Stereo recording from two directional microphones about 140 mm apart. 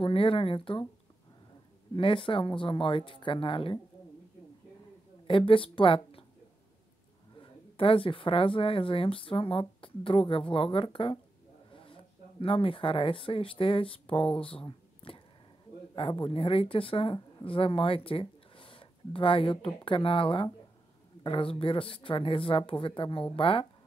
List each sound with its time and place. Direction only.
0.0 s speech: 40° left (ahead or behind)
2.0 s speech: 40° left (ahead or behind)
5.2 s a woman's voice: 40° left (ahead or behind)
7.3 s speech: 40° left (ahead or behind)